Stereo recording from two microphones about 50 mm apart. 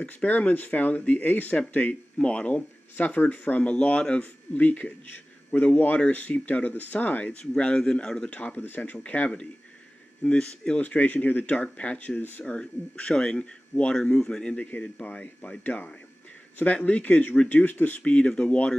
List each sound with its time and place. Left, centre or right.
0.0 s speech: left
7.2 s speech: centre
8.3 s speech: left
10.2 s speech: centre
10.8 s a man's voice: left
14.7 s speech: left
18.0 s speech: left